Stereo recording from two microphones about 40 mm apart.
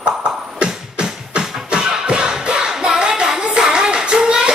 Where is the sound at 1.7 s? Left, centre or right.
Right.